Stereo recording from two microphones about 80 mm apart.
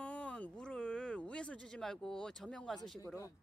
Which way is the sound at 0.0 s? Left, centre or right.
Centre.